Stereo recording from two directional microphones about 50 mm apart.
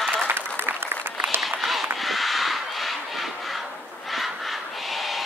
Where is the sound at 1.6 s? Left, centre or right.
Centre.